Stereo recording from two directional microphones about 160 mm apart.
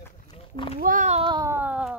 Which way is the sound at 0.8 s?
55° right (ahead or behind).